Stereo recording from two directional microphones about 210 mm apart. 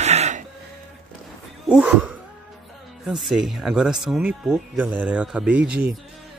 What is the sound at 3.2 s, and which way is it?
Speech, centre (ahead or behind).